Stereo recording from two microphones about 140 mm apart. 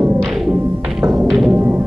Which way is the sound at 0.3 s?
5° right (ahead or behind).